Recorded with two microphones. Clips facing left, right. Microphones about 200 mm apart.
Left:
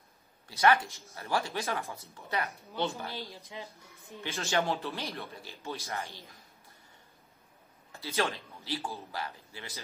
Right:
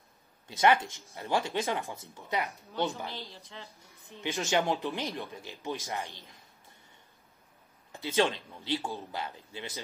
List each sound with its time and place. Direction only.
0.5 s speech: 20° right (ahead or behind)
3.1 s speech: 15° left (ahead or behind)
4.2 s speech: 15° right (ahead or behind)
7.9 s speech: 20° right (ahead or behind)